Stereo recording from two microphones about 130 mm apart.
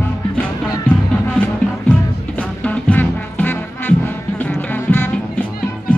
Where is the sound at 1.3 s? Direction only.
10° left (ahead or behind).